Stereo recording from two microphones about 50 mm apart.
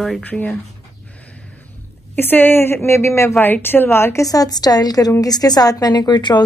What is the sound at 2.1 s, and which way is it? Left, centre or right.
A woman's voice, left.